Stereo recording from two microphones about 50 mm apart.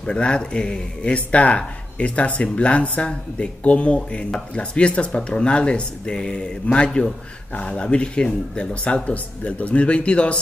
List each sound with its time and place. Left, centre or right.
0.0 s a man's voice: centre